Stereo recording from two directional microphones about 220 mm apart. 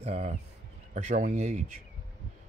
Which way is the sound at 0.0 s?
30° right (ahead or behind).